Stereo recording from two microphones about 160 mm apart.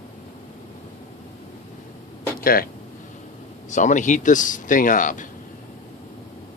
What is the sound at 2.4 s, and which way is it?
Speech, 65° left (ahead or behind).